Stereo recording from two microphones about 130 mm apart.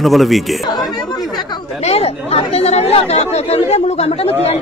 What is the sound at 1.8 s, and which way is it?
Speech, 50° left (ahead or behind).